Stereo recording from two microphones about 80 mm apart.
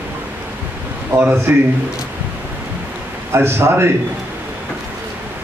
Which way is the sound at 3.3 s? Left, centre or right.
Right.